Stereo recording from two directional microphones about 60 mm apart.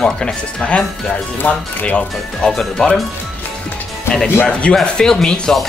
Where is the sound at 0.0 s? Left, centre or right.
Centre.